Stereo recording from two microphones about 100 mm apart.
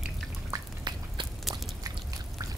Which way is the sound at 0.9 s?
50° right (ahead or behind).